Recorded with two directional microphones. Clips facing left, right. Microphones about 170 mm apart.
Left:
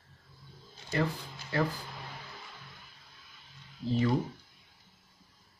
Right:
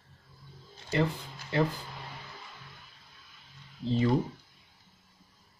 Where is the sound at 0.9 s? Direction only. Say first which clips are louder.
Right 2 dB; 20° right (ahead or behind).